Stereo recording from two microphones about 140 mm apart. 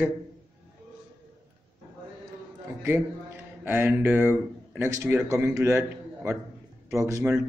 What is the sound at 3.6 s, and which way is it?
A man's voice, 15° right (ahead or behind).